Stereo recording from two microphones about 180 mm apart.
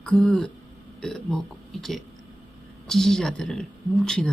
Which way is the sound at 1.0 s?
5° left (ahead or behind).